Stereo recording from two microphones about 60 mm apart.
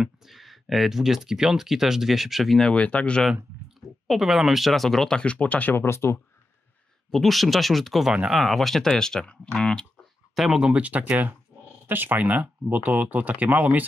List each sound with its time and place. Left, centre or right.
0.0 s speech: centre
2.6 s speech: centre
4.1 s speech: centre; by 5.8 s left
5.8 s speech: left
7.1 s speech: centre
10.3 s speech: centre
10.7 s speech: right